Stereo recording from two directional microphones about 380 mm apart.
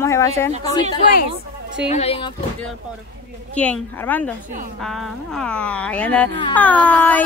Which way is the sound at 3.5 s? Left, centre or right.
Centre.